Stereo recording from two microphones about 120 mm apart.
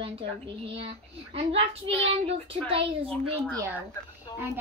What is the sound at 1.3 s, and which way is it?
A woman's voice, 55° right (ahead or behind).